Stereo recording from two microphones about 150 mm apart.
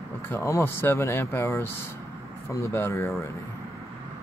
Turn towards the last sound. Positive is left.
turn(degrees=15)  # may be behind; listen again after turning